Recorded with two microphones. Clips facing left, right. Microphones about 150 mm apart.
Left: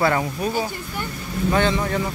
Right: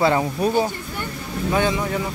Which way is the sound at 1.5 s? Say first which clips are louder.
Even; 10° right (ahead or behind).